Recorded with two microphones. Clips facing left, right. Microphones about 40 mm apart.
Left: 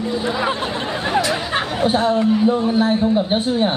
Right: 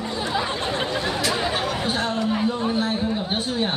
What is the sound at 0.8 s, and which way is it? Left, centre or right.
Chatter, left.